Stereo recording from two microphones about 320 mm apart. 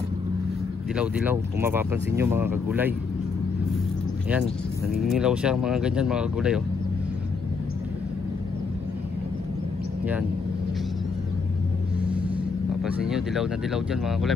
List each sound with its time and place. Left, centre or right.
0.9 s speech: centre
5.0 s speech: centre
12.0 s a sound: centre
12.8 s speech: centre